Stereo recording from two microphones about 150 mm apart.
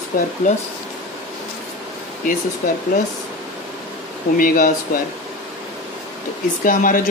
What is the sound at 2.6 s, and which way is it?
Speech, 90° left.